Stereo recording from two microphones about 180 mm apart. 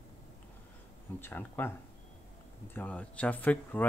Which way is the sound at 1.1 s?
10° left (ahead or behind).